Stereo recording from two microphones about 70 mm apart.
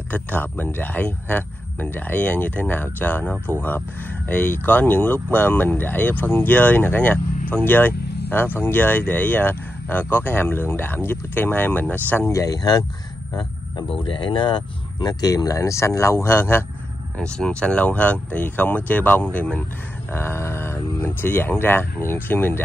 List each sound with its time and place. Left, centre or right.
0.1 s speech: left
12.3 s speech: left
13.3 s a sound: left
14.3 s speech: left
17.2 s speech: centre
20.1 s speech: left